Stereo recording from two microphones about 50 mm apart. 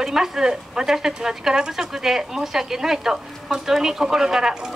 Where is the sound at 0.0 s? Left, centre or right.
Centre.